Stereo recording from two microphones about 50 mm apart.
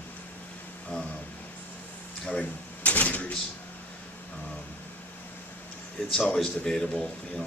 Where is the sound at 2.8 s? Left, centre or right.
Left.